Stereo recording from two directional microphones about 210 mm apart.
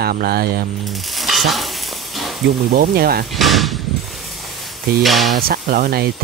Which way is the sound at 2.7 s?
45° right (ahead or behind).